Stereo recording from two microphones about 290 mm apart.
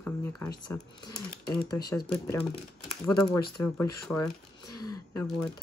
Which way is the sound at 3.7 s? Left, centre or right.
Centre.